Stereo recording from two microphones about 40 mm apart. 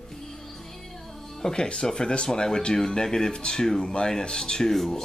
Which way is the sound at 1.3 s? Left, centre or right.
Centre.